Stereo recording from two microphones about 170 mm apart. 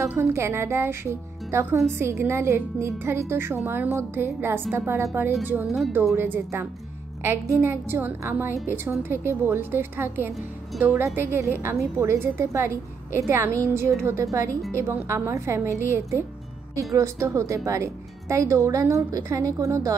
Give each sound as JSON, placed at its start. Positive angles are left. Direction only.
{"t": 0.0, "sound": "a woman's voice", "side_deg": -15}